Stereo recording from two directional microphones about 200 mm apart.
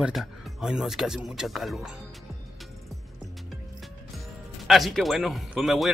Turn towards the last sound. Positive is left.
turn(degrees=0)  # may be behind; listen again after turning